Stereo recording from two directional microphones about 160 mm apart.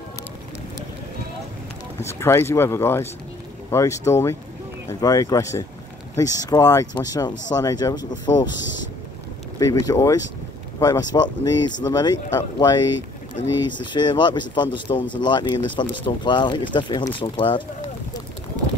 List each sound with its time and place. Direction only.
2.0 s speech: 15° left (ahead or behind)
9.6 s speech: 20° left (ahead or behind)